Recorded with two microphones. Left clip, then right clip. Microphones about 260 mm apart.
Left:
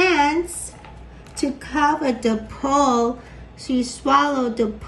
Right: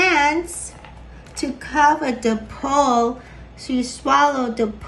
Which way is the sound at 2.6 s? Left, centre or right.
Right.